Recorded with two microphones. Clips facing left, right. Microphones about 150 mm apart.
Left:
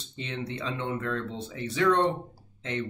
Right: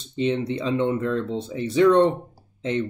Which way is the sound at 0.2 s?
20° right (ahead or behind).